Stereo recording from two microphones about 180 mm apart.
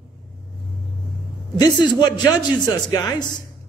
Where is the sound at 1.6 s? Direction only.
25° left (ahead or behind).